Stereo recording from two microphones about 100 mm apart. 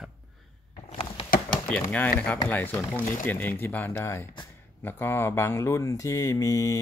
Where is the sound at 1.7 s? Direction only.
15° left (ahead or behind).